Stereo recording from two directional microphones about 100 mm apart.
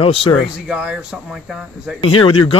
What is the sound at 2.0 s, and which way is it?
Speech, 60° left (ahead or behind).